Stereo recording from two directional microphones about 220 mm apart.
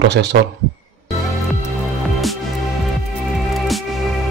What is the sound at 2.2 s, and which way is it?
Music, centre (ahead or behind).